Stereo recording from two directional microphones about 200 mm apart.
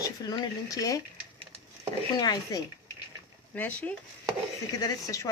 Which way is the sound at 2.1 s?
20° left (ahead or behind).